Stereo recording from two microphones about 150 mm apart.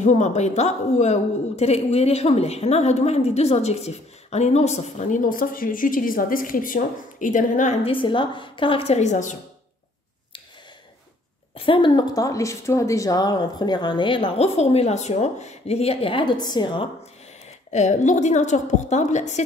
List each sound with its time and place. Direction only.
0.0 s a woman's voice: 50° left (ahead or behind)
7.8 s speech: 35° left (ahead or behind); by 9.4 s 55° left (ahead or behind)
11.5 s speech: 35° left (ahead or behind)
17.7 s a woman's voice: 55° left (ahead or behind)